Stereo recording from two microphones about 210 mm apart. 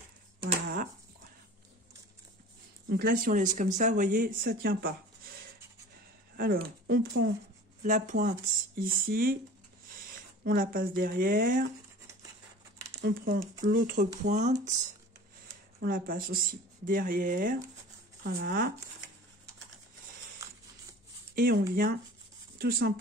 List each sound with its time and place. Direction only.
2.9 s speech: 45° right (ahead or behind)
9.9 s a sound: 40° right (ahead or behind)
11.0 s speech: 45° right (ahead or behind)
13.0 s speech: 50° right (ahead or behind)
21.4 s speech: 45° right (ahead or behind)